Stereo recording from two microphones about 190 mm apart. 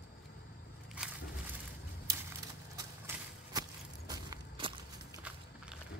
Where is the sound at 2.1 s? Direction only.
15° right (ahead or behind).